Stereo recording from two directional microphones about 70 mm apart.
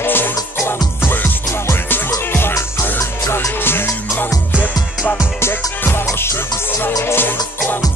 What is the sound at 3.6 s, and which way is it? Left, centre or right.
Music, left.